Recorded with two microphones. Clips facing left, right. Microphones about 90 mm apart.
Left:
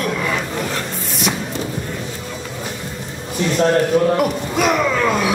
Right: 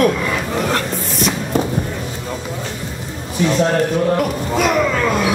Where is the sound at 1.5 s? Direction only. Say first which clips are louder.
Right 7 dB; 50° right (ahead or behind).